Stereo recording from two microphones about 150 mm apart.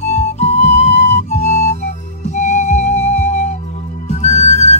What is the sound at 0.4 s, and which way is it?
Music, 45° left (ahead or behind).